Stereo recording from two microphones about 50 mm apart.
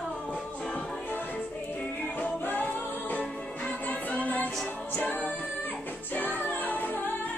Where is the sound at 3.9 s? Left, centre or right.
Left.